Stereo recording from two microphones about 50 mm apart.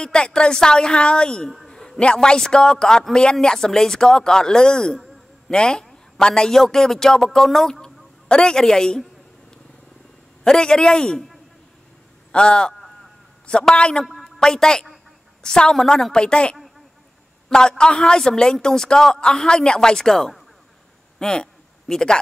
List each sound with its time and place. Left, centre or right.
0.0 s a woman's voice: centre
1.7 s a sound: centre
2.1 s a woman's voice: centre
10.4 s a woman's voice: centre
12.3 s a woman's voice: centre
21.2 s a sound: centre